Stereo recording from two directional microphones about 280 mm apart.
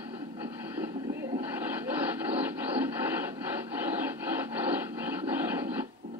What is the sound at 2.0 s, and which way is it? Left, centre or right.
Radio, centre.